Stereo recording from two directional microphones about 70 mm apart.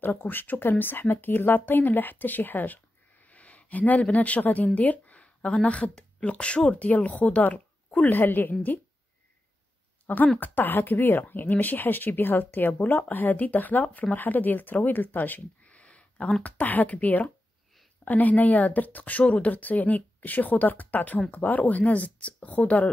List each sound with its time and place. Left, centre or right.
0.0 s a woman's voice: left
10.0 s speech: left